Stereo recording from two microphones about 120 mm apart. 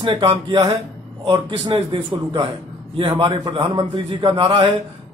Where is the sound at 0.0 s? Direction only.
45° right (ahead or behind).